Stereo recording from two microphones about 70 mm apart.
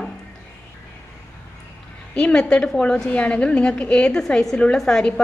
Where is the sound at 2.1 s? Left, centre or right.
Centre.